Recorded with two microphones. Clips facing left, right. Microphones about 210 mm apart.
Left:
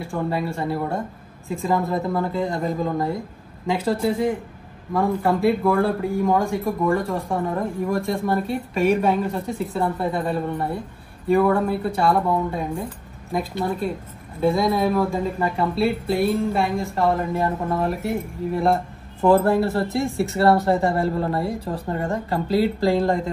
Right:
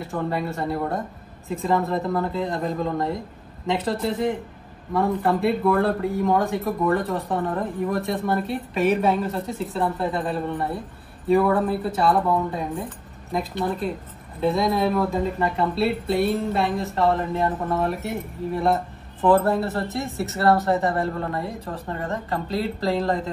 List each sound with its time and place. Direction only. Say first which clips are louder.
0.0 s speech: left 1 dB; centre (ahead or behind)
20.8 s speech: left 3 dB; 30° left (ahead or behind)
22.3 s speech: left 7 dB; centre (ahead or behind)